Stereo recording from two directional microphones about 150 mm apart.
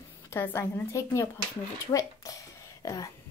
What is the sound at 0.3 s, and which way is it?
A woman's voice, 15° left (ahead or behind).